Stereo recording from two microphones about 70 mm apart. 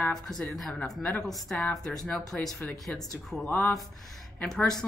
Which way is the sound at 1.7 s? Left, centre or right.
Centre.